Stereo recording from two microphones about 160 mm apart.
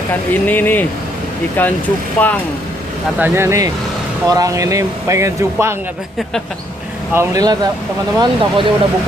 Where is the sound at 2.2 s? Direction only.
10° left (ahead or behind).